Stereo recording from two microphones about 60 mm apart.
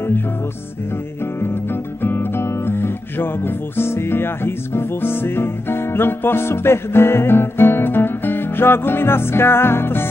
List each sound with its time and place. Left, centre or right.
1.4 s speech: left